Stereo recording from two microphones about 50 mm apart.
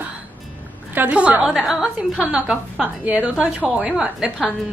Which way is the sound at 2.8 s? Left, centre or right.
Right.